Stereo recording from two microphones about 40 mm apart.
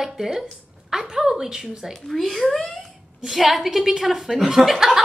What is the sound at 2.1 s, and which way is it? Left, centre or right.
Speech, centre.